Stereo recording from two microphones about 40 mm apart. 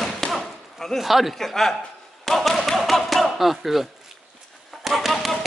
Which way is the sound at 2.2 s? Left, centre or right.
Centre.